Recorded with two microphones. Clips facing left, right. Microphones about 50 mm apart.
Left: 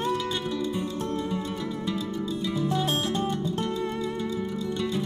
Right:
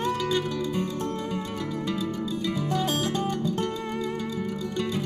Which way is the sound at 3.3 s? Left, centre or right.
Right.